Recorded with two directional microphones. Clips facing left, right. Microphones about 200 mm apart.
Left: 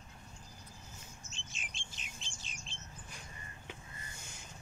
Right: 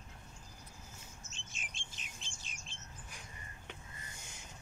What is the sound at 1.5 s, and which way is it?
Bird, 50° right (ahead or behind).